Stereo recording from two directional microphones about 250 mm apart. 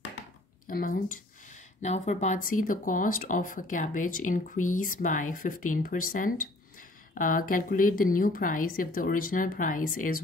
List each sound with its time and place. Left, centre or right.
0.7 s speech: left